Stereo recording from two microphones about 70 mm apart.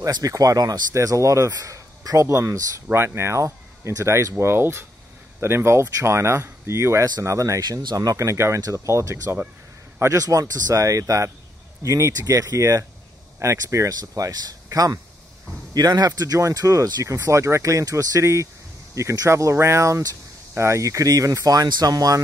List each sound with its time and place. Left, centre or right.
0.0 s speech: right
0.9 s speech: right
7.8 s speech: right
9.9 s speech: right
15.7 s speech: right
16.3 s speech: right
17.0 s speech: right